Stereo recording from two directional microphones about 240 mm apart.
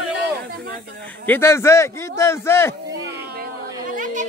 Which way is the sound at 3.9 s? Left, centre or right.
Right.